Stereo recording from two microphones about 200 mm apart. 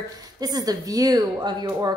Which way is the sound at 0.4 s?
20° right (ahead or behind).